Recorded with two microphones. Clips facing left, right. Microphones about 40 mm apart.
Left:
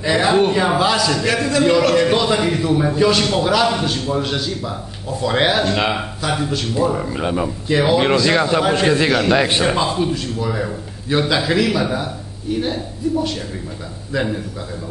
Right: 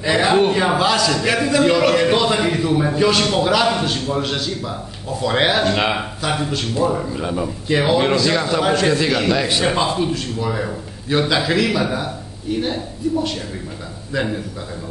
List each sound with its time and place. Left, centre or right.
0.0 s a man's voice: centre
1.2 s a man's voice: centre
6.7 s speech: centre
7.1 s a man's voice: left
7.6 s a man's voice: centre
8.0 s a man's voice: centre
9.8 s a man's voice: centre